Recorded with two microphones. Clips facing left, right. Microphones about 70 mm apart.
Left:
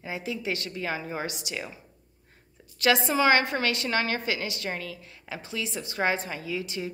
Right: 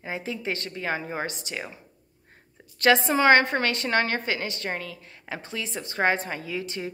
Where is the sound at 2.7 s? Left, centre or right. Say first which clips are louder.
Right 3 dB; right.